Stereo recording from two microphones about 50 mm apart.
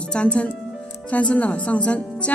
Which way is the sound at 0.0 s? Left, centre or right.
Left.